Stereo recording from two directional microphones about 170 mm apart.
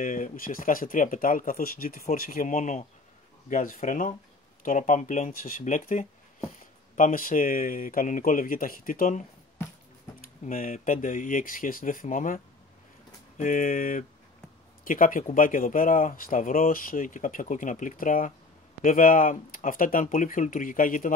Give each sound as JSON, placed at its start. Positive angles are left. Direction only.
{"t": 0.0, "sound": "speech", "side_deg": 55}
{"t": 10.4, "sound": "speech", "side_deg": 55}
{"t": 13.4, "sound": "speech", "side_deg": 50}